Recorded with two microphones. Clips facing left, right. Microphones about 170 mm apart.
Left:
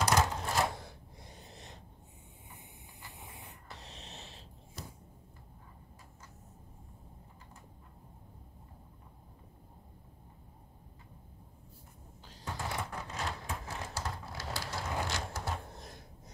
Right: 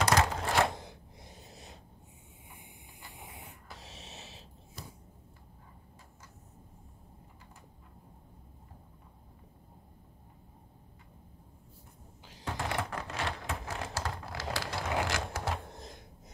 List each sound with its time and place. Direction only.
0.0 s typewriter: 90° right
1.5 s snort: centre (ahead or behind)
3.6 s snort: 5° right (ahead or behind)
12.4 s a sound: 85° right